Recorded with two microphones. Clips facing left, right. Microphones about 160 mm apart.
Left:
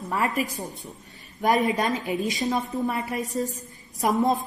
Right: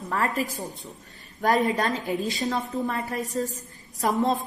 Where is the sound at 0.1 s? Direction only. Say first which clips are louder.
Even; 15° left (ahead or behind).